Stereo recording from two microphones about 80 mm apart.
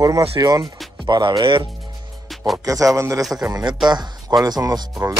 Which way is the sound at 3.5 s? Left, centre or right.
Right.